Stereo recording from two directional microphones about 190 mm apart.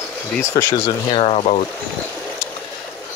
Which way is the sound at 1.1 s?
30° left (ahead or behind).